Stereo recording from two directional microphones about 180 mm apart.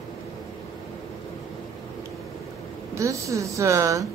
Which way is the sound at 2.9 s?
15° right (ahead or behind).